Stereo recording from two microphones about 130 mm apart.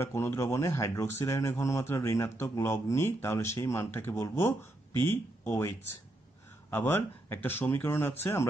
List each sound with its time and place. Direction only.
0.0 s speech: 20° left (ahead or behind)